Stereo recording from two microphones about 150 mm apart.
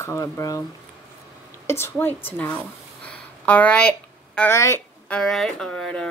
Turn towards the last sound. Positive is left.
turn(degrees=5)  # may be behind; listen again after turning